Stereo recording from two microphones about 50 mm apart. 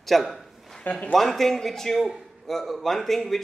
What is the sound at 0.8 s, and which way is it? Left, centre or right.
Speech, left.